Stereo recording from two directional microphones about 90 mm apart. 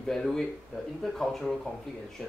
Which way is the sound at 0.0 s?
5° left (ahead or behind).